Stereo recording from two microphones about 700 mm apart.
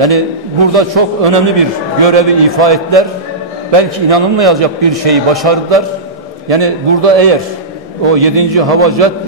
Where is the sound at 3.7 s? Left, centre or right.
Right.